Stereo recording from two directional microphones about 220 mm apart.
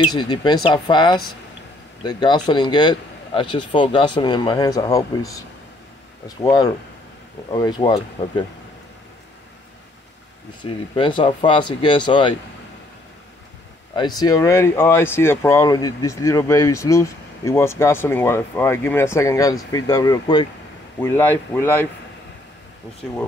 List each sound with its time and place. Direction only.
0.0 s speech: 20° left (ahead or behind)
10.6 s speech: 20° left (ahead or behind)
13.9 s speech: 20° left (ahead or behind)